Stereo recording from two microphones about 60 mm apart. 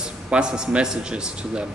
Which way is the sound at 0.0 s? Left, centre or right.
Centre.